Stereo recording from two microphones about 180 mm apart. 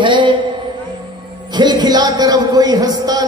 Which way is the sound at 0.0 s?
25° right (ahead or behind).